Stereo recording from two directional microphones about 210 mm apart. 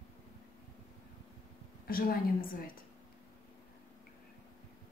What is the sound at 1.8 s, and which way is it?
Speech, 45° left (ahead or behind).